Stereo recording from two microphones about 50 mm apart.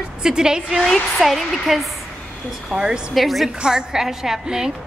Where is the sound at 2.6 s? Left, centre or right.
Centre.